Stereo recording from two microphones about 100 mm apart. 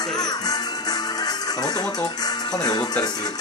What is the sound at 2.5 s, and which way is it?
Speech, 40° left (ahead or behind).